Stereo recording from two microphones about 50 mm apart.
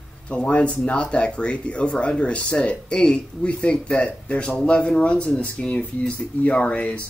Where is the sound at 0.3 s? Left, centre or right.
Left.